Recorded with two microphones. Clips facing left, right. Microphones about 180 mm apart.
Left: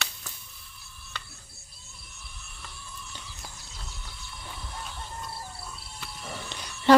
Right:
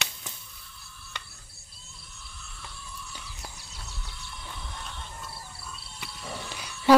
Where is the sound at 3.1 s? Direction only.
5° right (ahead or behind).